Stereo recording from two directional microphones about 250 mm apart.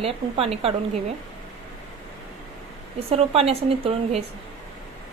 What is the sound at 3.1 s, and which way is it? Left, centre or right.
A woman's voice, right.